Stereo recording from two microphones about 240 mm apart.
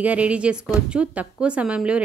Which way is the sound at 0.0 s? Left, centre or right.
Centre.